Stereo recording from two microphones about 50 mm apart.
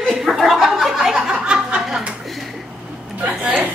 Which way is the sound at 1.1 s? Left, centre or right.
Centre.